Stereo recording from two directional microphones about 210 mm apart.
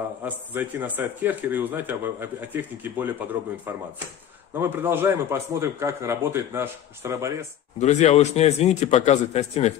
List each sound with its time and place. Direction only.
0.2 s speech: 10° right (ahead or behind)
4.6 s speech: 10° right (ahead or behind)
7.8 s speech: 35° left (ahead or behind)